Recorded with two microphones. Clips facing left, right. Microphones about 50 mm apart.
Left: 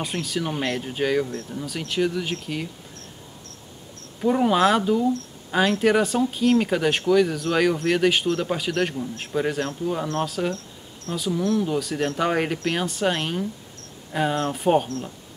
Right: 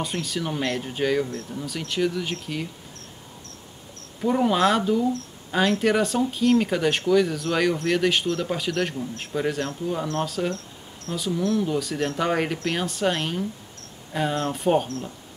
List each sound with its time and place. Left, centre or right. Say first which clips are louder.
0.0 s speech: left 1 dB; centre
4.2 s speech: left 1 dB; centre